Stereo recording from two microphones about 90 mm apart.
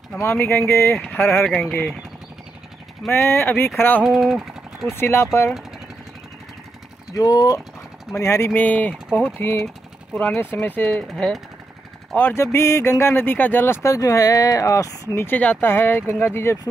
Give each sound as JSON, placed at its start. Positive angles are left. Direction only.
{"t": 0.2, "sound": "speech", "side_deg": 25}
{"t": 1.2, "sound": "speech", "side_deg": 5}
{"t": 3.3, "sound": "speech", "side_deg": 25}
{"t": 4.0, "sound": "speech", "side_deg": -5}
{"t": 4.9, "sound": "speech", "side_deg": 30}
{"t": 7.2, "sound": "speech", "side_deg": 45}
{"t": 8.1, "sound": "speech", "side_deg": 35}
{"t": 8.5, "sound": "speech", "side_deg": 20}
{"t": 12.2, "sound": "speech", "side_deg": 25}
{"t": 13.8, "sound": "speech", "side_deg": 40}
{"t": 15.1, "sound": "speech", "side_deg": 20}